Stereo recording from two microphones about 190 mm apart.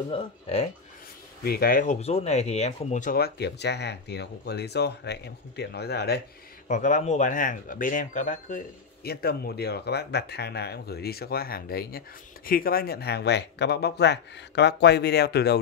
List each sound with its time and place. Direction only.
0.1 s speech: 30° left (ahead or behind)
1.4 s speech: 55° left (ahead or behind)
6.7 s speech: 40° left (ahead or behind); by 15.5 s 60° left (ahead or behind)